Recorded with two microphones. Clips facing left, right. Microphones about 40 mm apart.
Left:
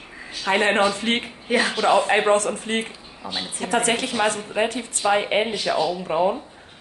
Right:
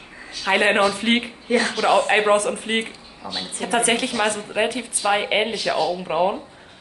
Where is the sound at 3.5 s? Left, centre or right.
Centre.